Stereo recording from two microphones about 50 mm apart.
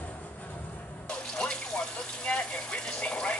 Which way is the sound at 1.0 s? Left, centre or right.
Centre.